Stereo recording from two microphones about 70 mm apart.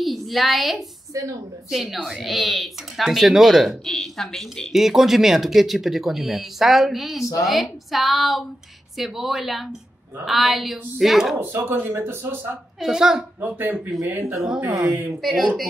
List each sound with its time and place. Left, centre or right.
0.0 s a woman's voice: centre
1.1 s a woman's voice: right
1.7 s speech: centre
3.8 s speech: centre
11.6 s speech: right
12.8 s a woman's voice: centre
13.4 s speech: right
14.3 s a woman's voice: centre
14.9 s speech: right
15.2 s speech: centre